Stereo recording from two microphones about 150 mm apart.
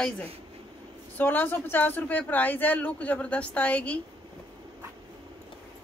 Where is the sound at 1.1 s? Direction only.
10° left (ahead or behind).